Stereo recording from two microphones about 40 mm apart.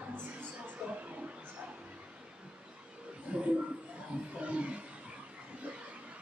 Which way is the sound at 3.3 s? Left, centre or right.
Right.